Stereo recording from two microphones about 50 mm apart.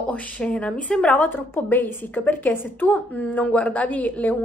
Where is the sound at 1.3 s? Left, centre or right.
Left.